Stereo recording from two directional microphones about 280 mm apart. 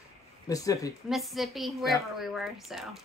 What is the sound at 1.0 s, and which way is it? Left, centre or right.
A woman's voice, centre.